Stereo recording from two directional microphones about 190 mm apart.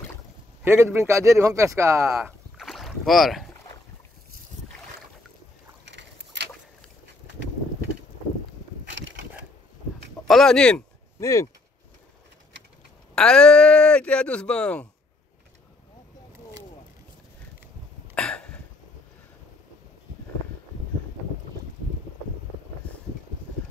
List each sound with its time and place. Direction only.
0.7 s speech: 15° right (ahead or behind)
2.5 s rowboat: centre (ahead or behind)
5.9 s vehicle: 65° right (ahead or behind)
8.8 s a sound: 75° right (ahead or behind)
10.2 s speech: centre (ahead or behind)
11.1 s speech: 15° left (ahead or behind)
13.1 s speech: 5° left (ahead or behind)
18.1 s a sound: 5° left (ahead or behind)
22.8 s vehicle: 5° left (ahead or behind)